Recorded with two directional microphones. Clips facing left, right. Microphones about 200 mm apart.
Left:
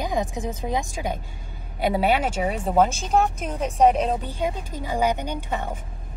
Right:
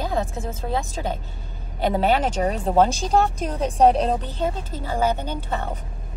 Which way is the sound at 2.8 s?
35° right (ahead or behind).